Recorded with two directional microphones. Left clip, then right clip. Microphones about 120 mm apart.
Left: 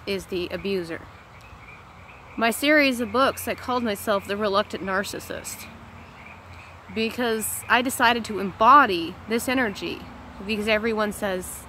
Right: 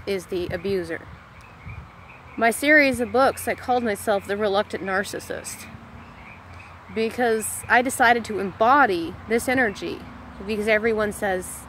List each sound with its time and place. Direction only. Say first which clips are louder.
0.0 s speech: right 2 dB; 15° left (ahead or behind)
2.3 s speech: right 3 dB; 15° left (ahead or behind)
7.0 s speech: right 3 dB; 15° left (ahead or behind)